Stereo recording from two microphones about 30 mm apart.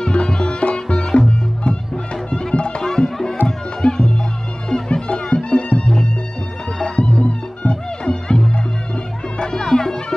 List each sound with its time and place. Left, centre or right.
0.0 s music: left
0.6 s music: left
2.8 s music: centre; by 8.1 s left
8.1 s music: left